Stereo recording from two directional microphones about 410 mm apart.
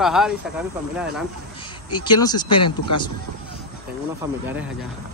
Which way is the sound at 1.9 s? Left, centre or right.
Centre.